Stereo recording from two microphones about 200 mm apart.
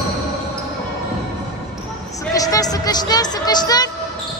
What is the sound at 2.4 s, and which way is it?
Speech, 20° left (ahead or behind).